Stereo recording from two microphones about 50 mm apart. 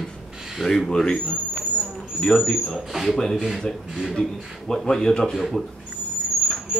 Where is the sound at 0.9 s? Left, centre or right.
Centre.